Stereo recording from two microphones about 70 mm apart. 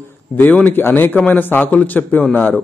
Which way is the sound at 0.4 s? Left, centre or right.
Left.